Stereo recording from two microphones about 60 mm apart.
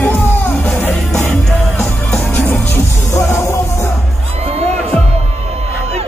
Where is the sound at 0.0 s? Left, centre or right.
Left.